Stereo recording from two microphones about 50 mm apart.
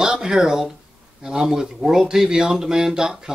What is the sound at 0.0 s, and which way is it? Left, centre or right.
Speech, centre.